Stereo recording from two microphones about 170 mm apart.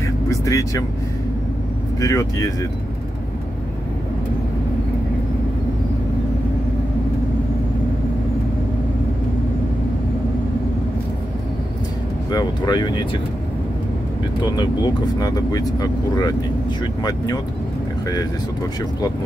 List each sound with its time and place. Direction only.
0.3 s vehicle: 20° left (ahead or behind)
2.0 s speech: 20° left (ahead or behind)
12.3 s speech: 25° left (ahead or behind)
14.4 s speech: 25° left (ahead or behind)